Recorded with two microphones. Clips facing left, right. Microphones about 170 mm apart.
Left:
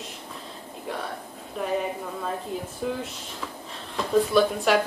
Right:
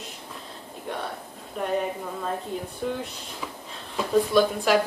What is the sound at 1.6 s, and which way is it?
Speech, centre (ahead or behind).